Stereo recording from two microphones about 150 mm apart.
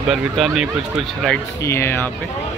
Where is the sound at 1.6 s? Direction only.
15° left (ahead or behind).